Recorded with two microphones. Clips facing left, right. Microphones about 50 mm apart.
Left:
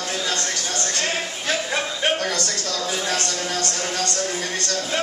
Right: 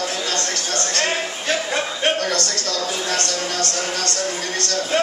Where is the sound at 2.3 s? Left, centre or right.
Centre.